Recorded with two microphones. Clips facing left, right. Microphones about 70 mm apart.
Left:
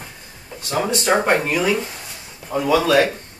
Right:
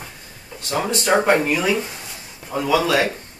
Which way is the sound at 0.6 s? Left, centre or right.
Centre.